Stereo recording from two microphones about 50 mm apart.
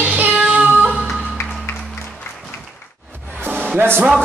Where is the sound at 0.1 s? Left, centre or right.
Right.